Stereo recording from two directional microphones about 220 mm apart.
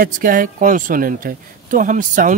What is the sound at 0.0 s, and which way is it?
Speech, 40° right (ahead or behind).